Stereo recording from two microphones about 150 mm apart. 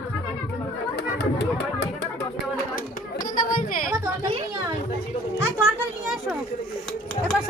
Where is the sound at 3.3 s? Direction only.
65° left (ahead or behind).